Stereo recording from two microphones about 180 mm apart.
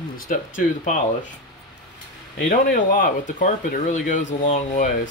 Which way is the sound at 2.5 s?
50° left (ahead or behind).